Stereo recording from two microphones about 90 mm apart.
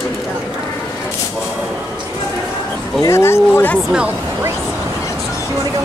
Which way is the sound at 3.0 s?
30° left (ahead or behind).